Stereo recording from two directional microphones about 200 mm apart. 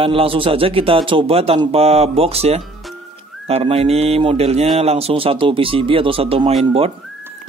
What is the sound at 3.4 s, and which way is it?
A man's voice, 30° right (ahead or behind).